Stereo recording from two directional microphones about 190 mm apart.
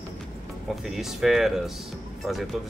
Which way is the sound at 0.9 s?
Centre (ahead or behind).